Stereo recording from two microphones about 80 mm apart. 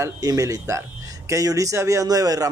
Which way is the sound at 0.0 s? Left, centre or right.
Right.